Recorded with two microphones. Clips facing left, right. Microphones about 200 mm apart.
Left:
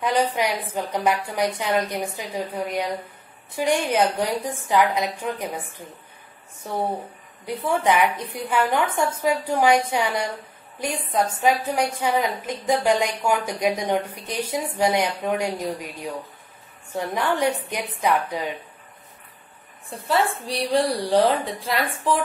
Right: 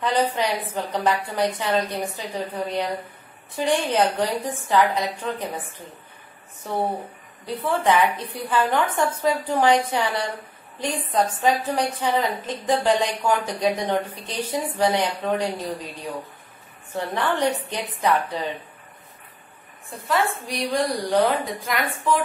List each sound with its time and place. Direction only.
0.0 s a woman's voice: 15° left (ahead or behind)
6.7 s a woman's voice: 10° right (ahead or behind)
7.4 s a woman's voice: 15° left (ahead or behind)
16.9 s a woman's voice: 10° left (ahead or behind)
19.9 s a woman's voice: 30° left (ahead or behind)